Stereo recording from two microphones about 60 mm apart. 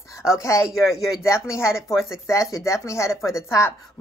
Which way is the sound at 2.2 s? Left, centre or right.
Left.